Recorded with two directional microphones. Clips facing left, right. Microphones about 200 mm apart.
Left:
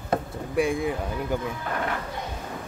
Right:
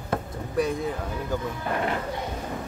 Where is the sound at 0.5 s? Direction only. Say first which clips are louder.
Left 2 dB; 10° left (ahead or behind).